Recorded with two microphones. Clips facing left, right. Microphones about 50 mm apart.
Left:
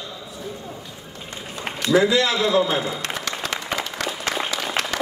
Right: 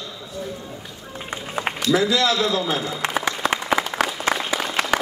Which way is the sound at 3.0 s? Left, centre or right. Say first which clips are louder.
Right 5 dB; right.